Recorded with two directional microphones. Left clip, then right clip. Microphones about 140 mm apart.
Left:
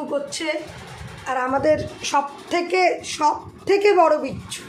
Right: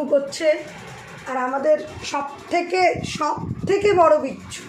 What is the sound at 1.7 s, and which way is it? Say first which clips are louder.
Speech: right 2 dB; 25° left (ahead or behind).